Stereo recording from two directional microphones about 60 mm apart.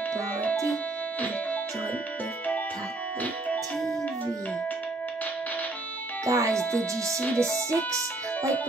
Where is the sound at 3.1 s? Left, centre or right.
Left.